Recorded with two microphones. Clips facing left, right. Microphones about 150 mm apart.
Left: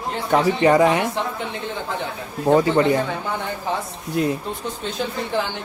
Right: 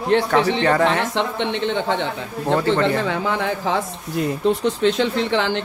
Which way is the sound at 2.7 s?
90° right.